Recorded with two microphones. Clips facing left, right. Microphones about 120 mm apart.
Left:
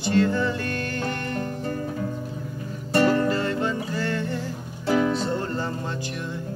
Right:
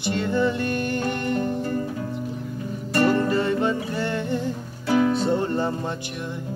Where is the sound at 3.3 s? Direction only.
20° right (ahead or behind).